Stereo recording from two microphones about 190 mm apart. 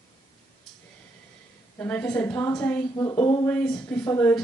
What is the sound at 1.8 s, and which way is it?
Speech, 10° left (ahead or behind).